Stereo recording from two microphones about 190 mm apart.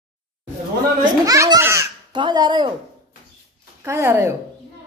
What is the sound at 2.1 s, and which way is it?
Speech, 25° right (ahead or behind).